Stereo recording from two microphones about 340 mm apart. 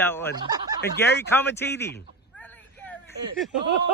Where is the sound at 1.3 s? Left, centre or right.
Centre.